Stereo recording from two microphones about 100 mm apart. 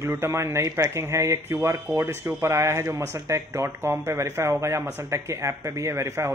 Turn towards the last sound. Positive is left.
turn(degrees=-30)  # may be behind; listen again after turning